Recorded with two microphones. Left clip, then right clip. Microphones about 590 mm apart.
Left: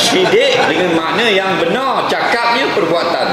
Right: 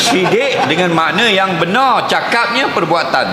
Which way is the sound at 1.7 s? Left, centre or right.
Right.